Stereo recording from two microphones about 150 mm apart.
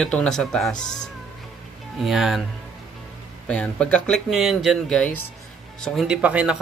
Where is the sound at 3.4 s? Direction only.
10° left (ahead or behind).